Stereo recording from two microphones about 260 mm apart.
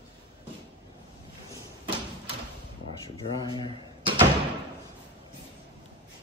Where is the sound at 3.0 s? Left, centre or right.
Centre.